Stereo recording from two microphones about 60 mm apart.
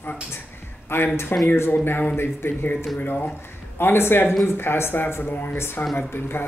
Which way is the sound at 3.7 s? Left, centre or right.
Left.